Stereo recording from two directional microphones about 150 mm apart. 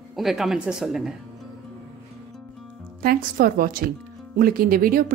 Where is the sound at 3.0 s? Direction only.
75° right (ahead or behind).